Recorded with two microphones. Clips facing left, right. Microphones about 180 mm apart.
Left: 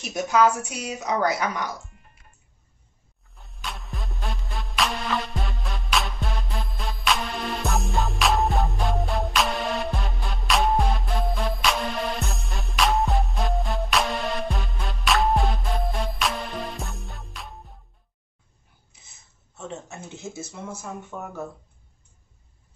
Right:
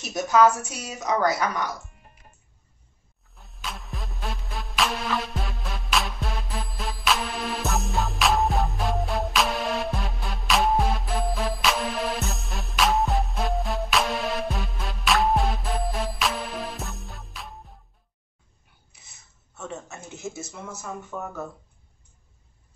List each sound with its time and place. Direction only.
0.9 s speech: 20° left (ahead or behind)
3.3 s music: centre (ahead or behind)
19.5 s speech: 30° left (ahead or behind)